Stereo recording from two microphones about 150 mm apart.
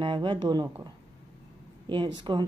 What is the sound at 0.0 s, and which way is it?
Speech, 35° right (ahead or behind).